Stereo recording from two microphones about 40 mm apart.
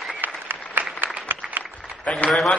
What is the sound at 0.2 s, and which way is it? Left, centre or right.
Applause, right.